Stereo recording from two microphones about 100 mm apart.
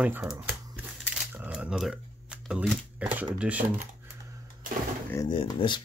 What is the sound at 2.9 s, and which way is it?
Speech, 15° right (ahead or behind).